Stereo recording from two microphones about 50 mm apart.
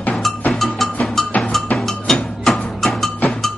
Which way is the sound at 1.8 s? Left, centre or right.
Centre.